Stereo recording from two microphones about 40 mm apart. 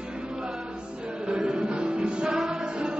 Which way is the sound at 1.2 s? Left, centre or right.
Centre.